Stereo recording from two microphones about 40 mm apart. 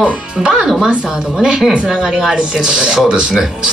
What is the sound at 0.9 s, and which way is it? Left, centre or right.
Speech, centre.